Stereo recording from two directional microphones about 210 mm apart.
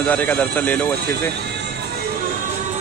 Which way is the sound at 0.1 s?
5° left (ahead or behind).